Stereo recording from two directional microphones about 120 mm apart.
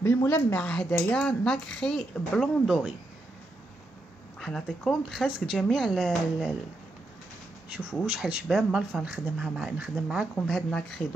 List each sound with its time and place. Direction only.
0.0 s speech: 20° left (ahead or behind)
2.6 s speech: 5° right (ahead or behind)
4.4 s speech: 5° left (ahead or behind)
8.0 s speech: 5° right (ahead or behind)